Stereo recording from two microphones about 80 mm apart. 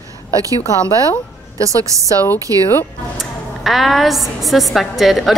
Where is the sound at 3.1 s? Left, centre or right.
Centre.